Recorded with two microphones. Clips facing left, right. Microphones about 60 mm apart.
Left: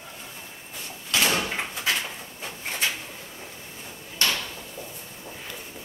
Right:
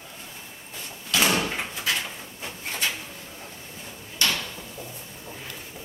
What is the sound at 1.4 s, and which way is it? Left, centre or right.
Door, centre.